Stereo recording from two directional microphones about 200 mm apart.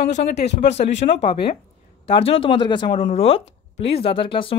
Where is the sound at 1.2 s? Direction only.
25° left (ahead or behind).